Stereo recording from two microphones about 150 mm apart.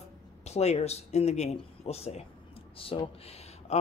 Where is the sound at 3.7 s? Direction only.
45° left (ahead or behind).